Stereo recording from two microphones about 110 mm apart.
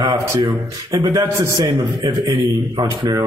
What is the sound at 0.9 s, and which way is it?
Speech, 30° right (ahead or behind).